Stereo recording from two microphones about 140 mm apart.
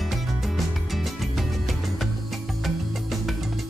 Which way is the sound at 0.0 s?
Centre (ahead or behind).